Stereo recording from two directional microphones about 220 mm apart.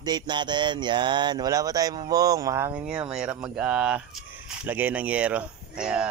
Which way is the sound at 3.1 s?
5° right (ahead or behind).